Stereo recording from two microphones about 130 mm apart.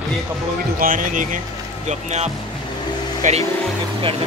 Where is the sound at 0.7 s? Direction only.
90° right.